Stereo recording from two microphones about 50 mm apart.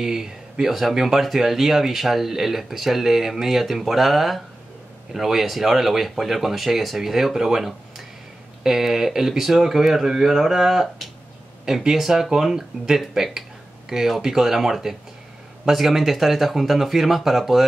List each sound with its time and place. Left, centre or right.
0.0 s speech: centre